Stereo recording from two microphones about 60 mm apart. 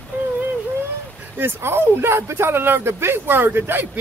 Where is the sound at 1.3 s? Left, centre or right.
Right.